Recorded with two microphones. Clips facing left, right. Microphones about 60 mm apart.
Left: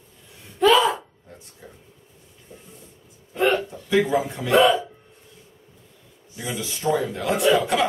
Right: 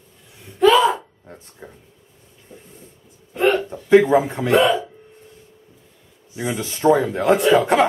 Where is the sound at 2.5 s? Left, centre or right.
Right.